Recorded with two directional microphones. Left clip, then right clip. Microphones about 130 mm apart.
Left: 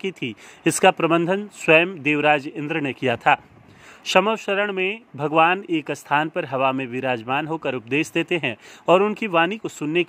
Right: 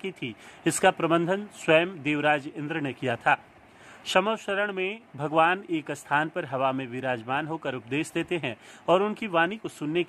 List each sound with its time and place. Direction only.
0.0 s speech: 35° left (ahead or behind)